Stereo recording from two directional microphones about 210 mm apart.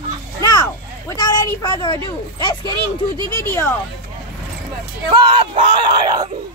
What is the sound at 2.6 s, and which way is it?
Speech, 20° right (ahead or behind).